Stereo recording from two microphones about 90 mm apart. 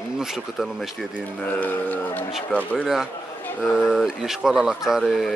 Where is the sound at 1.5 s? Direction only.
20° left (ahead or behind).